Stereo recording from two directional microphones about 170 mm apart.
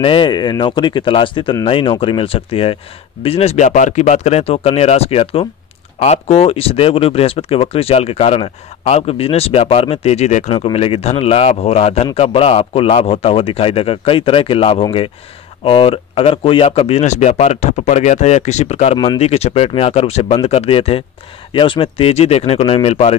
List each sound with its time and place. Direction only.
0.0 s speech: 30° left (ahead or behind)